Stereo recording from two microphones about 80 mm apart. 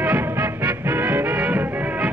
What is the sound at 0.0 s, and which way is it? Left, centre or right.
Music, right.